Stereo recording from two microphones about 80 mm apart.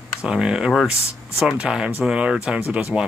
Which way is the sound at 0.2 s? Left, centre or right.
Centre.